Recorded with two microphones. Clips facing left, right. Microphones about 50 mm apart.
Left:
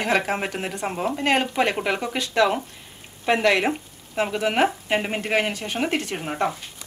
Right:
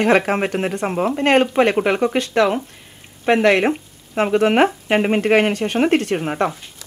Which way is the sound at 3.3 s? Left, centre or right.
Right.